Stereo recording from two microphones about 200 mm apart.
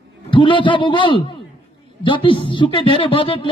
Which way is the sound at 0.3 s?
25° left (ahead or behind).